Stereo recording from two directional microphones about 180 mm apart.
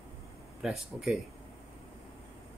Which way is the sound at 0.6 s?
Centre (ahead or behind).